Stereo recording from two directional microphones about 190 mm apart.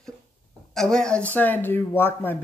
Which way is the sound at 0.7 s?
5° left (ahead or behind).